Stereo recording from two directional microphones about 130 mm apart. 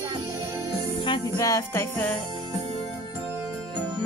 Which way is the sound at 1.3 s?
25° left (ahead or behind).